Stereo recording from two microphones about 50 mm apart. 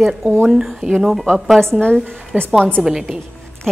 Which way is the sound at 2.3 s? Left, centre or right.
Right.